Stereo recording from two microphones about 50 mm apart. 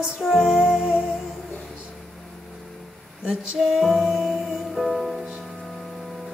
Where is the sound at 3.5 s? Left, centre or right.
Centre.